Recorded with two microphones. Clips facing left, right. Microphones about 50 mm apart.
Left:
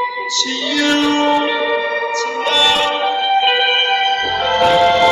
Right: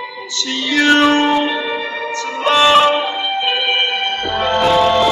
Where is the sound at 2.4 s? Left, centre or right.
Right.